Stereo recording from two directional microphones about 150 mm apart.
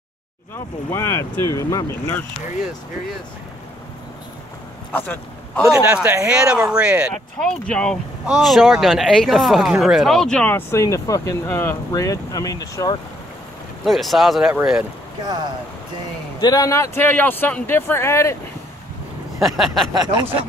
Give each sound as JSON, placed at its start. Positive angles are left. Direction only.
{"t": 0.8, "sound": "speech", "side_deg": 20}
{"t": 4.9, "sound": "speech", "side_deg": 10}
{"t": 5.8, "sound": "speech", "side_deg": -15}
{"t": 7.3, "sound": "speech", "side_deg": 5}
{"t": 13.8, "sound": "speech", "side_deg": 0}
{"t": 16.3, "sound": "speech", "side_deg": 25}
{"t": 19.4, "sound": "speech", "side_deg": 0}
{"t": 19.9, "sound": "speech", "side_deg": -25}